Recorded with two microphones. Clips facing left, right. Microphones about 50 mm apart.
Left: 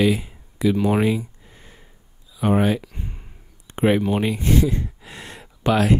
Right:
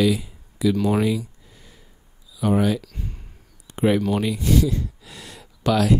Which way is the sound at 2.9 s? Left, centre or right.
Left.